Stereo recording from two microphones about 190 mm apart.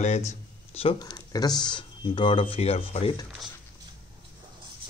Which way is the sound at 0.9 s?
20° left (ahead or behind).